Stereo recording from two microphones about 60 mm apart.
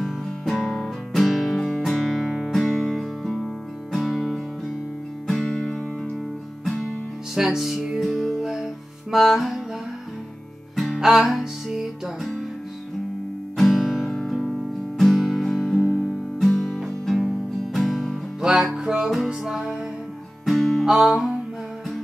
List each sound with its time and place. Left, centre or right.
0.0 s music: centre
7.3 s music: centre
11.0 s music: centre
13.6 s music: centre
15.9 s music: right
16.3 s music: centre
18.4 s music: centre
20.8 s music: centre